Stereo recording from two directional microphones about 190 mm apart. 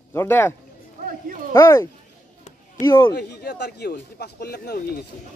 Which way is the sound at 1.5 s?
15° left (ahead or behind).